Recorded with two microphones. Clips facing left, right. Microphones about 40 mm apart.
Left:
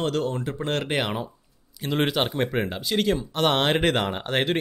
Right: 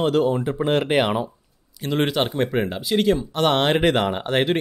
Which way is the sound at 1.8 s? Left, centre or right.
Centre.